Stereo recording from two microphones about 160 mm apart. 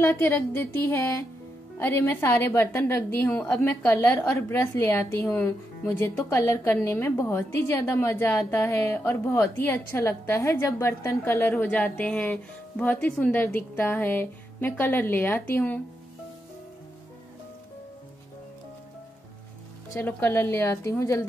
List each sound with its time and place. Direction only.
0.0 s a woman's voice: 15° left (ahead or behind)
20.0 s a woman's voice: 15° left (ahead or behind)